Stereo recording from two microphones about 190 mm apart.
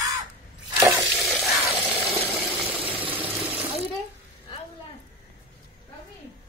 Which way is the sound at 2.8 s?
30° right (ahead or behind).